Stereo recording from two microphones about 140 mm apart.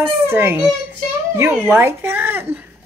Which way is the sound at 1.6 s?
15° right (ahead or behind).